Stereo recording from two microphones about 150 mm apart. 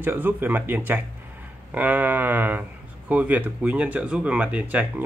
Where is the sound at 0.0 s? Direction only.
15° right (ahead or behind).